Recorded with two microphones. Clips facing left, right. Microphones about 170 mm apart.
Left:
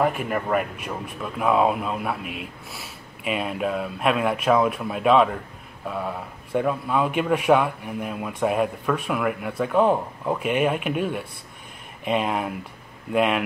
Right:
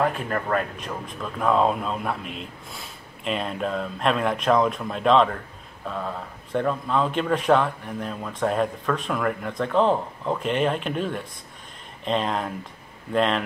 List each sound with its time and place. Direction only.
0.0 s speech: 10° left (ahead or behind)